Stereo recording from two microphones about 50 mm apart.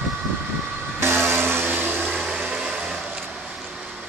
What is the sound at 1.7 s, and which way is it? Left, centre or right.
Vehicle, right.